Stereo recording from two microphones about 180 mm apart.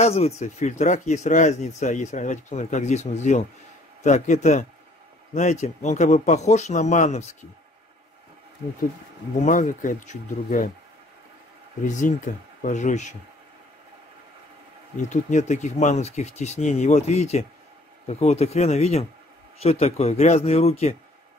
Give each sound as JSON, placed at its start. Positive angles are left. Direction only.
{"t": 0.0, "sound": "speech", "side_deg": 35}
{"t": 9.4, "sound": "speech", "side_deg": 45}
{"t": 11.8, "sound": "speech", "side_deg": 45}
{"t": 15.0, "sound": "speech", "side_deg": 40}